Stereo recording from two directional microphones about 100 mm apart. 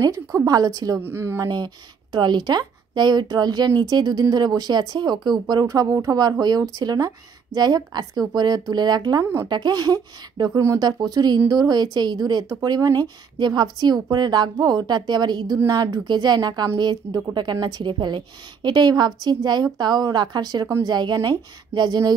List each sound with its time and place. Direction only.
0.0 s a woman's voice: 35° right (ahead or behind)
1.0 s speech: 25° right (ahead or behind)
2.1 s a woman's voice: 45° right (ahead or behind)
5.7 s a woman's voice: 35° right (ahead or behind)
9.2 s speech: 25° right (ahead or behind)
9.5 s a woman's voice: 45° right (ahead or behind)